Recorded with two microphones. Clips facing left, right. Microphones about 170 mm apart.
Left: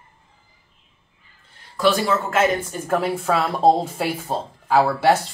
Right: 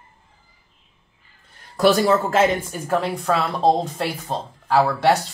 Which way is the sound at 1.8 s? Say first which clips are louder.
Right 3 dB; 40° right (ahead or behind).